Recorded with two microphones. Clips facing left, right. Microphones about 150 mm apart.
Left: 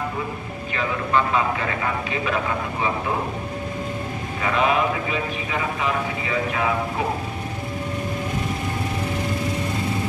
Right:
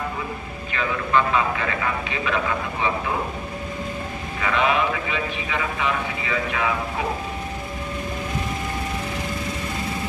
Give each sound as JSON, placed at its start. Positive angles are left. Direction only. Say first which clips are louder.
{"t": 4.4, "sound": "a man's voice", "louder": "left 1 dB", "side_deg": 40}